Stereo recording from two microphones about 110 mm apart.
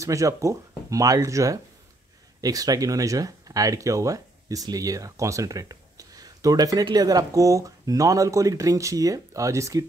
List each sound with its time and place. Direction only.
0.0 s speech: 30° right (ahead or behind)